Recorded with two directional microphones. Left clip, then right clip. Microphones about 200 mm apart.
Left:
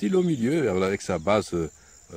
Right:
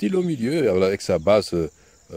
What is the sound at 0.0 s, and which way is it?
Speech, 30° right (ahead or behind).